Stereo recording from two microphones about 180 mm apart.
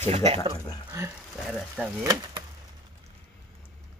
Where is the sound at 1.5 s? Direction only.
Centre (ahead or behind).